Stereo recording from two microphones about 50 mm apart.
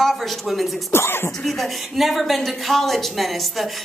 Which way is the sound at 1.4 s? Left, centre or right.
Centre.